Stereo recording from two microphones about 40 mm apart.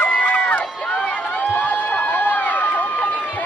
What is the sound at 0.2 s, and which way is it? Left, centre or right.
Crowd, left.